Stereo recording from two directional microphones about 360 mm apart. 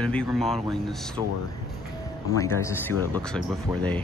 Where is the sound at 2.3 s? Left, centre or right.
Centre.